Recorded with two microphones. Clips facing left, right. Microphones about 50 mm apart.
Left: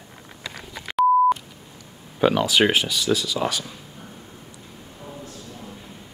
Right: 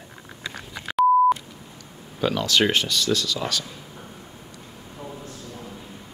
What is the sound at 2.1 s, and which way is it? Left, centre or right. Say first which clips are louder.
Speech: left 3 dB; centre.